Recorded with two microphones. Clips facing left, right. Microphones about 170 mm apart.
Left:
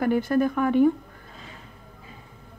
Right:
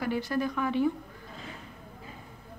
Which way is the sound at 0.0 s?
50° left (ahead or behind).